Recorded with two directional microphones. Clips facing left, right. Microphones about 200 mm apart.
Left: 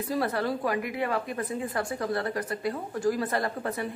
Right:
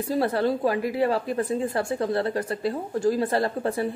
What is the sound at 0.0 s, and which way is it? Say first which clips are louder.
A woman's voice: right 5 dB; 30° right (ahead or behind).